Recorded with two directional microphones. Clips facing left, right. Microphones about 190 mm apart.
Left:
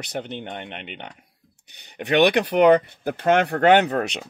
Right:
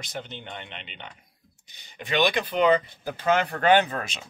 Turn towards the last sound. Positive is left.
turn(degrees=70)  # may be behind; listen again after turning